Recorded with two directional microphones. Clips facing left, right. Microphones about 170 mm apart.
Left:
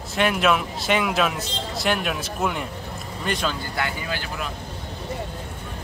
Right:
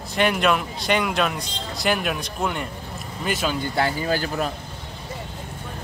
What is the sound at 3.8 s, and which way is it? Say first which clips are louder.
Speech: right 6 dB; 35° right (ahead or behind).